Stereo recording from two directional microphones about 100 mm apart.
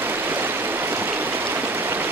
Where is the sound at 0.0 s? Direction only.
20° right (ahead or behind).